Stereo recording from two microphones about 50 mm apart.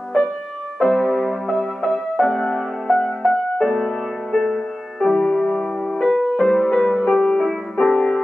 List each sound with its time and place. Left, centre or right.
0.7 s music: centre
5.0 s music: centre